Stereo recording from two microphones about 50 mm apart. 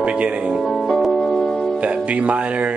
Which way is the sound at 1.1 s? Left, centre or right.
Centre.